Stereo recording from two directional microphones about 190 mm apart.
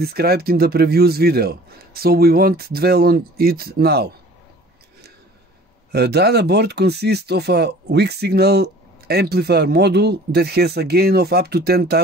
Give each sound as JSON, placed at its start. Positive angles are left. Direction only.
{"t": 0.0, "sound": "speech", "side_deg": -55}
{"t": 5.9, "sound": "speech", "side_deg": -60}